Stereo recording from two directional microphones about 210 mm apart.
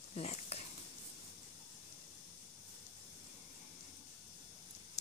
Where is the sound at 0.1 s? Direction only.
30° left (ahead or behind).